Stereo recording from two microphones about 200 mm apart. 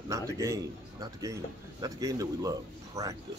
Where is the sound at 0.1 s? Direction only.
15° right (ahead or behind).